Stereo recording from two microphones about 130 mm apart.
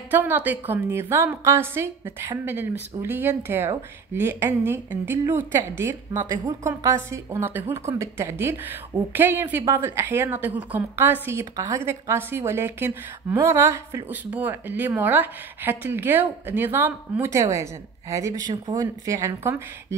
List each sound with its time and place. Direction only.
0.1 s speech: 15° right (ahead or behind)